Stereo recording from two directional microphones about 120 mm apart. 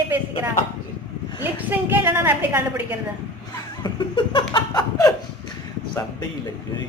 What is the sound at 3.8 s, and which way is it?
Laughter, 40° left (ahead or behind).